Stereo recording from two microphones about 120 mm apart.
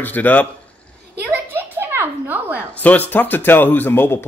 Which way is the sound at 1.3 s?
20° right (ahead or behind).